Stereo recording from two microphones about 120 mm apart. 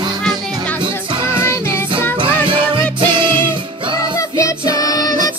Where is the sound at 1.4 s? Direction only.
20° left (ahead or behind).